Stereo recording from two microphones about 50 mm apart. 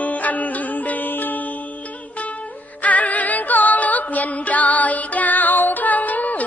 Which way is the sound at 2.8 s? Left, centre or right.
Left.